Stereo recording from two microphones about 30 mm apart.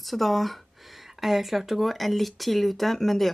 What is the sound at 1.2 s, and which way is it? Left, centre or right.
Speech, centre.